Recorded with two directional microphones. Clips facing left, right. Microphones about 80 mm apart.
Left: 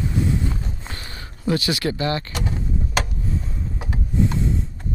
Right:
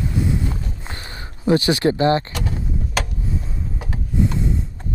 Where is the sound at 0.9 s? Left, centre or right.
Right.